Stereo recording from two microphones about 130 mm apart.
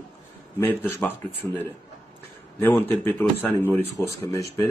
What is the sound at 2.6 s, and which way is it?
Speech, 15° left (ahead or behind).